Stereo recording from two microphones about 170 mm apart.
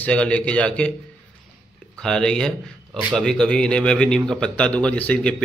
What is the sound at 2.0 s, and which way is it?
Speech, 5° left (ahead or behind).